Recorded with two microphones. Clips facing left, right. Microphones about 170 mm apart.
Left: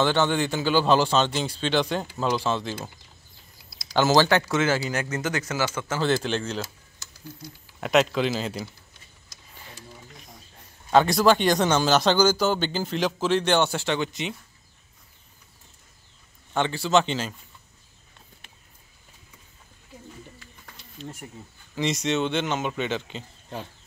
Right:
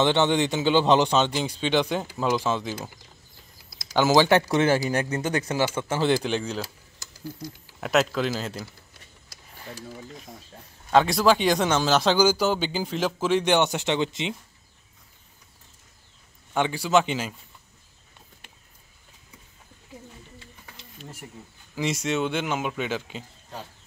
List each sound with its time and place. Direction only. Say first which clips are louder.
0.0 s speech: right 1 dB; 20° right (ahead or behind)
3.9 s speech: even; 15° right (ahead or behind)
5.1 s speech: right 2 dB; 30° right (ahead or behind); by 6.6 s 10° right (ahead or behind)
7.8 s a man's voice: left 2 dB; centre (ahead or behind)
10.9 s a man's voice: left 1 dB; centre (ahead or behind); by 14.3 s 25° right (ahead or behind)
16.5 s speech: even; 10° right (ahead or behind)
21.7 s speech: left 1 dB; 5° right (ahead or behind)